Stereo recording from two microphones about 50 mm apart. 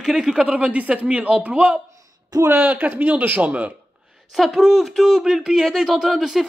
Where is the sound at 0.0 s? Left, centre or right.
Centre.